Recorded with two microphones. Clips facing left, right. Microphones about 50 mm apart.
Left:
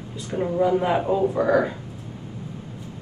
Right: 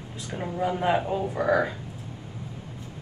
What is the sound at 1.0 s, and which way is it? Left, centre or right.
Speech, left.